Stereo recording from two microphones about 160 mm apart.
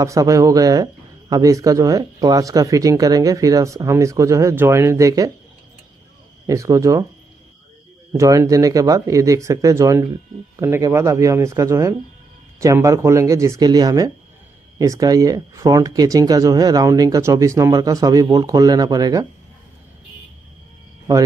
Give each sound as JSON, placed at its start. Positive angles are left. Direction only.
{"t": 0.0, "sound": "speech", "side_deg": -20}
{"t": 6.4, "sound": "speech", "side_deg": -20}
{"t": 8.1, "sound": "speech", "side_deg": -20}